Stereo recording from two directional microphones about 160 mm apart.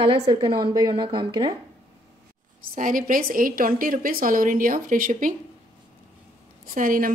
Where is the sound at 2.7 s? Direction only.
55° right (ahead or behind).